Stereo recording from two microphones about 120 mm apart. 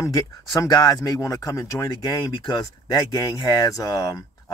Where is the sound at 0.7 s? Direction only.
35° left (ahead or behind).